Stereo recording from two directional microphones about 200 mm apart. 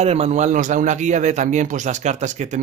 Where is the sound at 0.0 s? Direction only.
30° right (ahead or behind).